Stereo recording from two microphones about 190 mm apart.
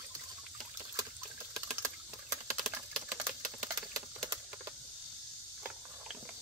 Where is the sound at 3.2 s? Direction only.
15° right (ahead or behind).